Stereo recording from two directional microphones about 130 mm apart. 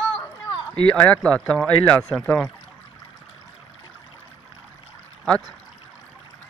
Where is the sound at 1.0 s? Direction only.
10° left (ahead or behind).